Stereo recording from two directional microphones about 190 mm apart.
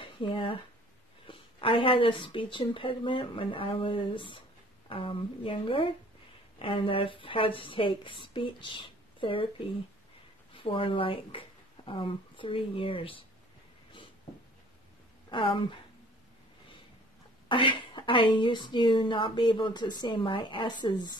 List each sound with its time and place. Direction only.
0.0 s a woman's voice: 25° left (ahead or behind)
10.5 s speech: 30° left (ahead or behind)
15.2 s a woman's voice: 25° left (ahead or behind)
17.5 s a woman's voice: 25° left (ahead or behind)